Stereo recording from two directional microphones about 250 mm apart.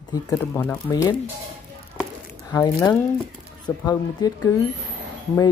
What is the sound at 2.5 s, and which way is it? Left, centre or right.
Speech, centre.